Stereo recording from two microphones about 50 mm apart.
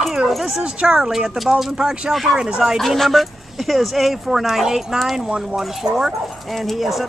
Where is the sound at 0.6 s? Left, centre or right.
Centre.